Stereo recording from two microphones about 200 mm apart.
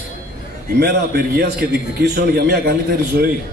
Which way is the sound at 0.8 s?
50° right (ahead or behind).